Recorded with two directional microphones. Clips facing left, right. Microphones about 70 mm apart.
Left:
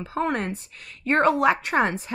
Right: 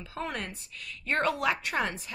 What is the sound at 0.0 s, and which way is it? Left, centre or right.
Speech, left.